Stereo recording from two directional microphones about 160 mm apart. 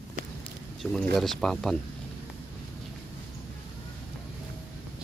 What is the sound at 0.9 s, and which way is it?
Speech, 5° left (ahead or behind).